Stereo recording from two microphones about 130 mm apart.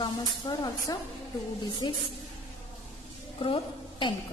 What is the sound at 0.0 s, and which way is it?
A woman's voice, 35° left (ahead or behind).